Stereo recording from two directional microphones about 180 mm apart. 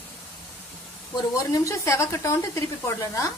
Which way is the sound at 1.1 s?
15° left (ahead or behind).